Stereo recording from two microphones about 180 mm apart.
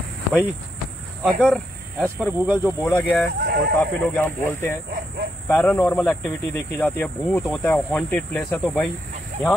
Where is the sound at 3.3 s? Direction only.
55° right (ahead or behind).